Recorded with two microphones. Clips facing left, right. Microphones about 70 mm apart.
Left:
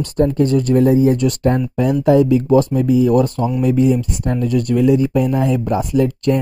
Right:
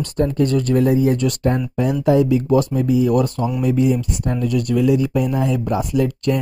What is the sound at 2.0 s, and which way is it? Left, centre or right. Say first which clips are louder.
Speech: left 3 dB; left.